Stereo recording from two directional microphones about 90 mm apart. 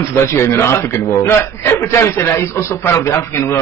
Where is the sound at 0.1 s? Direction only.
30° left (ahead or behind).